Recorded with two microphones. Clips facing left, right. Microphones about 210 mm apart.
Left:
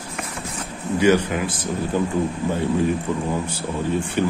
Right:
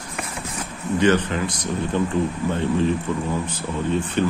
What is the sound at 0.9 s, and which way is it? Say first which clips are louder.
Speech: left 1 dB; 10° left (ahead or behind).